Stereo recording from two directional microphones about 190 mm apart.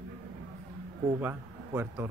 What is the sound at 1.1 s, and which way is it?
Speech, 10° right (ahead or behind).